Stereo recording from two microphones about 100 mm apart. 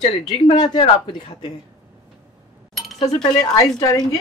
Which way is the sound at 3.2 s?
40° left (ahead or behind).